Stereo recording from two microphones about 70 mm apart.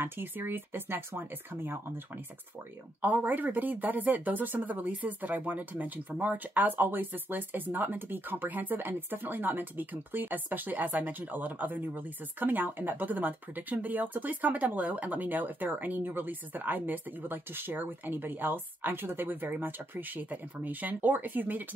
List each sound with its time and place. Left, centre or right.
0.0 s speech: right
3.0 s speech: right